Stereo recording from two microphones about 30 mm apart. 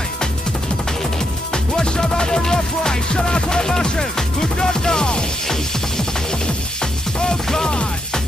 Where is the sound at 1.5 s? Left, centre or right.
Left.